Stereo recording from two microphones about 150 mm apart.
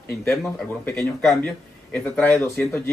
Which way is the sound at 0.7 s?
15° left (ahead or behind).